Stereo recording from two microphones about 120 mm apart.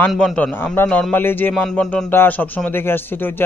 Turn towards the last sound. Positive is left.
turn(degrees=15)  # may be behind; listen again after turning